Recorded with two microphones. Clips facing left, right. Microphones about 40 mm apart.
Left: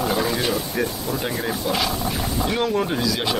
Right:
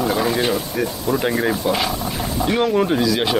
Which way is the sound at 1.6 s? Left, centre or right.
Centre.